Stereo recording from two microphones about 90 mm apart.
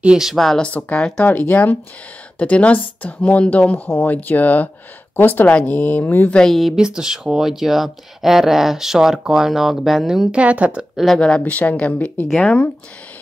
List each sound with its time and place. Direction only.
0.0 s speech: 5° right (ahead or behind)
0.7 s speech: 15° left (ahead or behind)
6.3 s speech: 5° left (ahead or behind)
6.7 s speech: 10° right (ahead or behind)
11.1 s speech: 10° left (ahead or behind)